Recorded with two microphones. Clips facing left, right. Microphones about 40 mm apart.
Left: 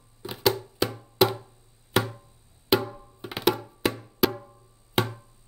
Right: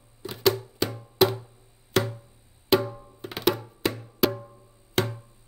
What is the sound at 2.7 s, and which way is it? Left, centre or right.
Percussion, centre.